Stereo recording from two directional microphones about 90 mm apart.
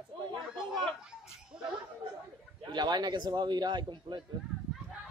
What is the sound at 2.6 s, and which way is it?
A man's voice, 55° right (ahead or behind).